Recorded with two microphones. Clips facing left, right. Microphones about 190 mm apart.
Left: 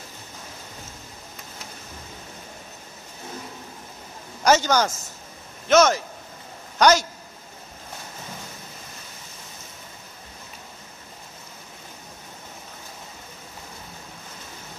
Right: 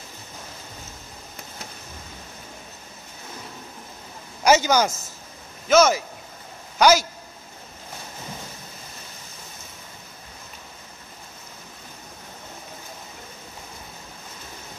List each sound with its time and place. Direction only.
4.5 s a man's voice: 10° right (ahead or behind)